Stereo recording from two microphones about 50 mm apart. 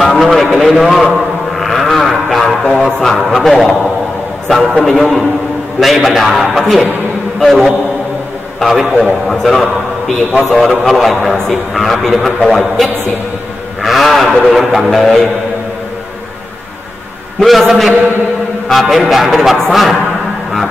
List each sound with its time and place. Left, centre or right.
0.0 s a man's voice: centre
1.1 s a sound: centre
3.0 s a man's voice: centre
4.7 s a man's voice: centre
13.8 s a sound: centre
14.5 s a man's voice: centre
17.4 s a man's voice: centre